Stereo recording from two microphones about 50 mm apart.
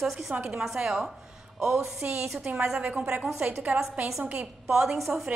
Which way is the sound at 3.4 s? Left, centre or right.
Right.